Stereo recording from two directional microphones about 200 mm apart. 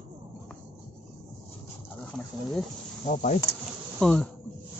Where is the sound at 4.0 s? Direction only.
5° left (ahead or behind).